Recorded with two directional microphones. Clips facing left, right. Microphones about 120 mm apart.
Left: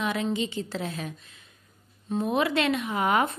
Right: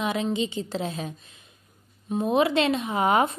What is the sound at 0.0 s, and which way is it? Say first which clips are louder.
Speech: right 2 dB; 20° right (ahead or behind).